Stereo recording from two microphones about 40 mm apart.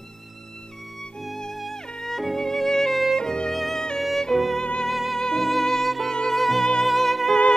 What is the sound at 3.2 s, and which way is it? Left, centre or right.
Violin, centre.